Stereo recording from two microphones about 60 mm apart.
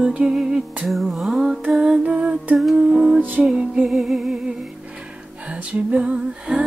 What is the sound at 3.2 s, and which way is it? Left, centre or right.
Music, right.